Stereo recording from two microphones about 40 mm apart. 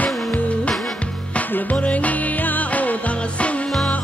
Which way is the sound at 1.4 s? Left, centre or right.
Left.